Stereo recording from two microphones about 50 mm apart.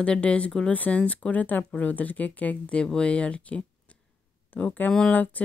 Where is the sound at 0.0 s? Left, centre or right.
Left.